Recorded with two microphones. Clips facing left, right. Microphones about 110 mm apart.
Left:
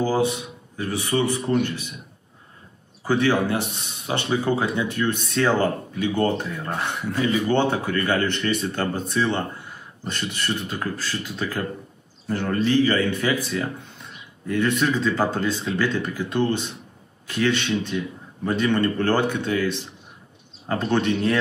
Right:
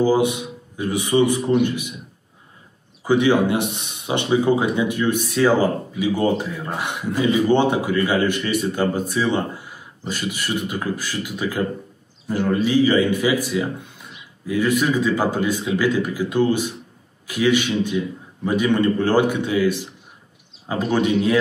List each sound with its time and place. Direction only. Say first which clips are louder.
0.0 s a man's voice: right 4 dB; 15° right (ahead or behind)
3.0 s speech: right 4 dB; 15° right (ahead or behind)